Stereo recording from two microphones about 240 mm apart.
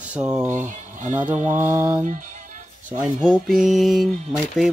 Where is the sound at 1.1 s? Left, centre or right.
Centre.